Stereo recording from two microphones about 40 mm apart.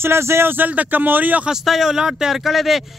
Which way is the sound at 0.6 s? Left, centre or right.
Right.